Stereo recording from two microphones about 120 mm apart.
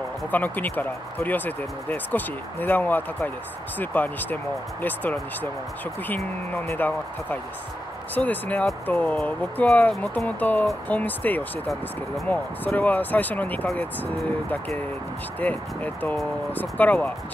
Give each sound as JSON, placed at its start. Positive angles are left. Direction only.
{"t": 0.3, "sound": "speech", "side_deg": 15}
{"t": 6.0, "sound": "speech", "side_deg": 15}
{"t": 15.4, "sound": "speech", "side_deg": 15}